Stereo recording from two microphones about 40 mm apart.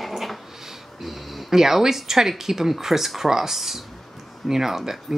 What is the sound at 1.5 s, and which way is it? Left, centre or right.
Speech, centre.